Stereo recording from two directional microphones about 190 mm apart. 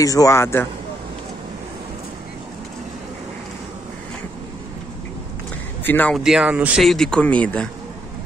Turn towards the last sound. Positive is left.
turn(degrees=5)  # may be behind; listen again after turning